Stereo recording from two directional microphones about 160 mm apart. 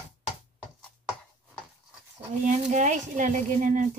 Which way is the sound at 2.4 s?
50° right (ahead or behind).